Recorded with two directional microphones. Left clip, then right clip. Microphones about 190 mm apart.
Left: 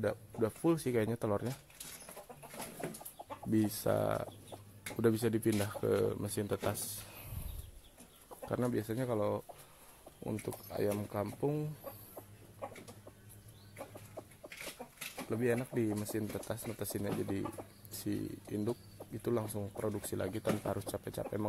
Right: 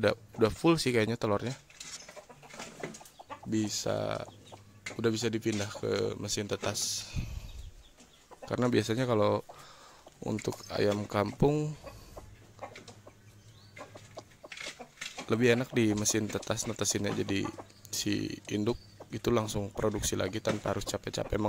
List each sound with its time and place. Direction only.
0.0 s speech: 20° right (ahead or behind)
3.4 s speech: centre (ahead or behind)
8.5 s speech: 20° right (ahead or behind)
15.2 s speech: 30° right (ahead or behind)
20.2 s speech: 15° right (ahead or behind)